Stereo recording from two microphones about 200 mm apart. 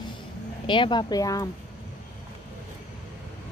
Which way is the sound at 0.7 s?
25° left (ahead or behind).